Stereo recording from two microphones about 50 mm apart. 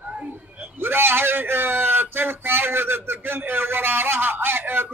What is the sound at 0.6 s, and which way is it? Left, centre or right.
Speech, right.